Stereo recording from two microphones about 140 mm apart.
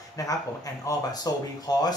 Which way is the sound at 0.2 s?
25° left (ahead or behind).